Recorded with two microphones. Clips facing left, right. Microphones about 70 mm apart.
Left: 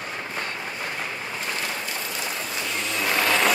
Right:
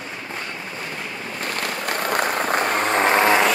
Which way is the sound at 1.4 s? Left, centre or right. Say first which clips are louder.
Right 5 dB; right.